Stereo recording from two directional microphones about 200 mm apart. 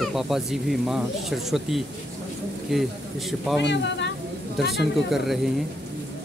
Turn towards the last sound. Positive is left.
turn(degrees=0)  # may be behind; listen again after turning